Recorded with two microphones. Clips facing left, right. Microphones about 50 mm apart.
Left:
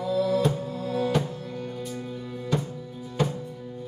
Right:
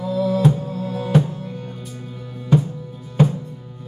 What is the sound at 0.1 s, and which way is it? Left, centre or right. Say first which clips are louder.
Music: right 5 dB; centre.